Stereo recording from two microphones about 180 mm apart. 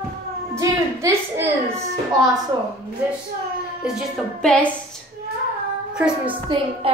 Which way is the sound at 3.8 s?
Centre (ahead or behind).